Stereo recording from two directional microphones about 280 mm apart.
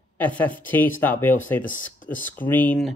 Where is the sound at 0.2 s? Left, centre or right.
Centre.